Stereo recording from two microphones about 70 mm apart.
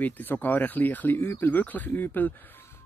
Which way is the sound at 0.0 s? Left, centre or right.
Left.